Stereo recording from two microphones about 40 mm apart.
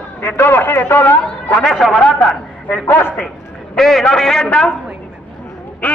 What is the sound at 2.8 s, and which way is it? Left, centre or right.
Speech, left.